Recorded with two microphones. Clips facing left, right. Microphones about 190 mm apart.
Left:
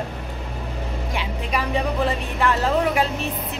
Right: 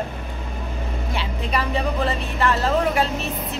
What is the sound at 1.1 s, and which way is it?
A woman's voice, 10° left (ahead or behind).